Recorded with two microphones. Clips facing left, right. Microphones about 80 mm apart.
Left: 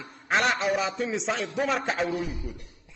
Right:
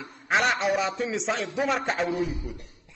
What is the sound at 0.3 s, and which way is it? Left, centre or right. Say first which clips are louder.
A man's voice: right 1 dB; centre.